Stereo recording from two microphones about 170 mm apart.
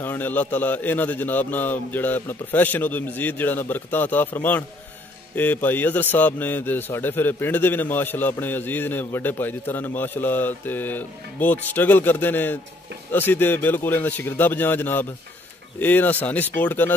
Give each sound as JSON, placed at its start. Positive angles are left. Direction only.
{"t": 0.0, "sound": "a man's voice", "side_deg": 10}